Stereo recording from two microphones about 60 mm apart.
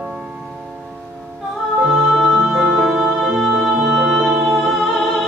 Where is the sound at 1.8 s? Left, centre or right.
Centre.